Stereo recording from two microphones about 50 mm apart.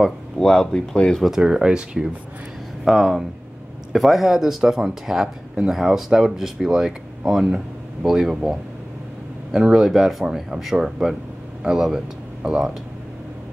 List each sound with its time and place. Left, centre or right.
0.4 s speech: centre
1.4 s speech: centre
2.8 s speech: centre